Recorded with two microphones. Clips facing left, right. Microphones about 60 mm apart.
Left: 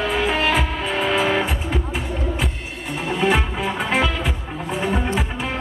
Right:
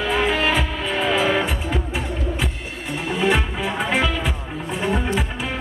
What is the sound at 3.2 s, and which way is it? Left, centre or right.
Music, centre.